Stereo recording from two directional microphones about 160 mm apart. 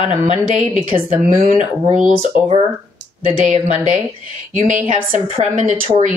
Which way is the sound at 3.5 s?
50° right (ahead or behind).